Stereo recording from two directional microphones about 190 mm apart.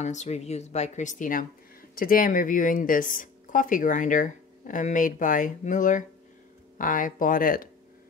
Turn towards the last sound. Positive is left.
turn(degrees=50)  # may be behind; listen again after turning